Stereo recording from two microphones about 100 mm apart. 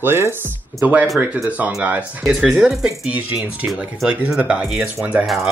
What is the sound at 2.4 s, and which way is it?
Speech, centre (ahead or behind).